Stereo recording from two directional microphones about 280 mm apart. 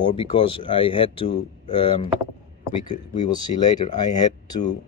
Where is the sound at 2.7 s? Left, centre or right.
Left.